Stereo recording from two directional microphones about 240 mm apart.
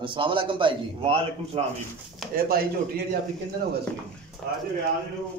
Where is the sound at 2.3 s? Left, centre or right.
Right.